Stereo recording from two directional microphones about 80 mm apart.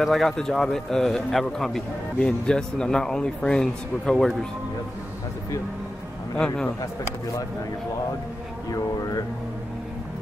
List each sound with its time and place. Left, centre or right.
0.0 s a man's voice: centre
6.3 s a man's voice: centre
8.6 s speech: left